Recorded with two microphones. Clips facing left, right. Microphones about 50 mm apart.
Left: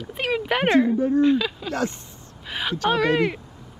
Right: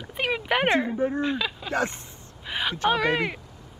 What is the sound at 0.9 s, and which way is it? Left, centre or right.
Speech, right.